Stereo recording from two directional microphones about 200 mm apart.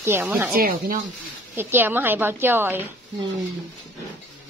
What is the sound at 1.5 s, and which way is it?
Speech, 10° right (ahead or behind).